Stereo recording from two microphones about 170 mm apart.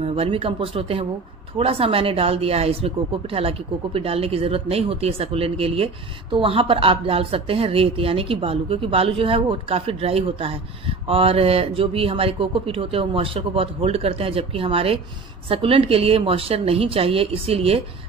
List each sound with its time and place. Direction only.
0.0 s speech: 35° right (ahead or behind)